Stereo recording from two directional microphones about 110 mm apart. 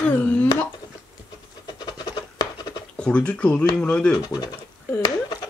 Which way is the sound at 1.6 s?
40° left (ahead or behind).